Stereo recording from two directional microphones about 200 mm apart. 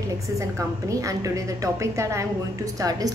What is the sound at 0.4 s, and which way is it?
A woman's voice, 15° right (ahead or behind).